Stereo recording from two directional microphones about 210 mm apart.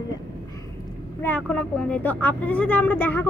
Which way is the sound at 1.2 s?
5° left (ahead or behind).